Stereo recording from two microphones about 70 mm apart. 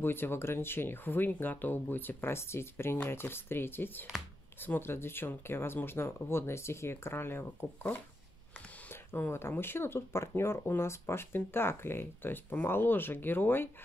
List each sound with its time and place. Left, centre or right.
0.0 s speech: left